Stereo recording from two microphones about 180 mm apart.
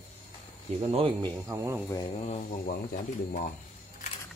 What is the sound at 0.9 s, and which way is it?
Speech, 25° right (ahead or behind).